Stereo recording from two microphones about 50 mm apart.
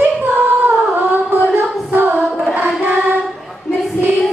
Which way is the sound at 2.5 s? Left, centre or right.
Right.